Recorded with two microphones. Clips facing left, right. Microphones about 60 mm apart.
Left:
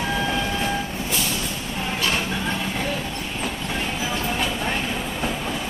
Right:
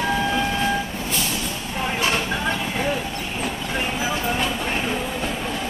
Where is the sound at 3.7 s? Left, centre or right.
Centre.